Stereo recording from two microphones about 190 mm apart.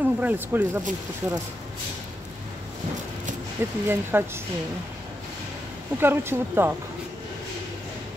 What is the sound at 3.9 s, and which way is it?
Speech, 10° right (ahead or behind).